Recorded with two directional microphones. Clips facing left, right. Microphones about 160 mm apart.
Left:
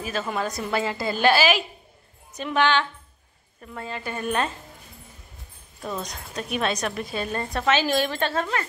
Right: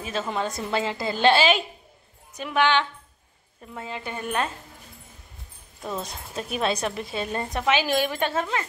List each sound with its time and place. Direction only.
0.3 s a woman's voice: 20° right (ahead or behind)
2.3 s a woman's voice: 10° right (ahead or behind)
5.8 s speech: 5° right (ahead or behind)
6.0 s a woman's voice: 30° right (ahead or behind)